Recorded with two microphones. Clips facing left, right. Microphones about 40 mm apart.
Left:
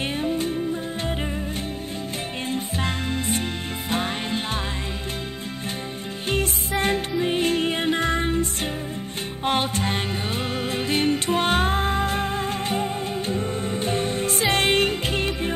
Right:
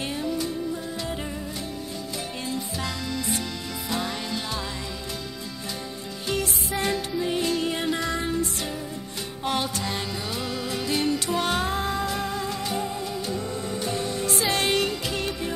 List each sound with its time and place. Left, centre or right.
0.2 s music: left
2.5 s music: left
6.2 s music: left